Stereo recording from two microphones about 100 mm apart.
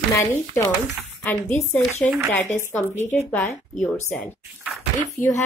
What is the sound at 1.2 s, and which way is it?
A woman's voice, 20° left (ahead or behind).